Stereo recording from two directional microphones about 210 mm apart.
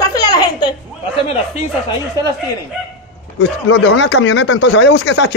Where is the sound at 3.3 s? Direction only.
60° left (ahead or behind).